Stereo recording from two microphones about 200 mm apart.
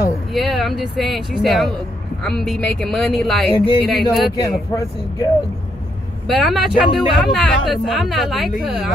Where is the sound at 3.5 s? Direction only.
25° left (ahead or behind).